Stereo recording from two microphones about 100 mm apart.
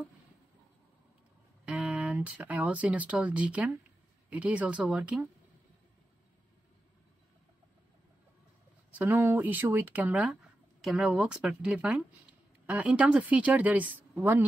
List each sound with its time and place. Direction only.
1.7 s speech: 15° right (ahead or behind)
8.9 s a woman's voice: 20° right (ahead or behind)